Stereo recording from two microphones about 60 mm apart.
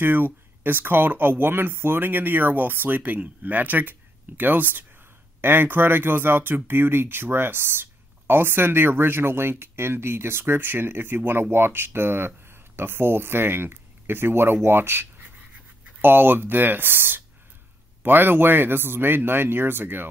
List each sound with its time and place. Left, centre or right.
0.0 s speech: right